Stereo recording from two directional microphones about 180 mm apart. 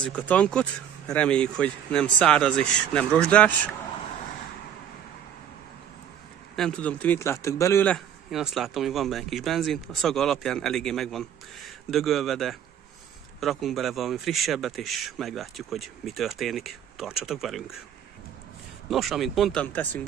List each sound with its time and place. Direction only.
0.0 s speech: 10° left (ahead or behind)
6.5 s speech: 5° left (ahead or behind)
8.3 s a man's voice: centre (ahead or behind)
18.9 s a man's voice: centre (ahead or behind)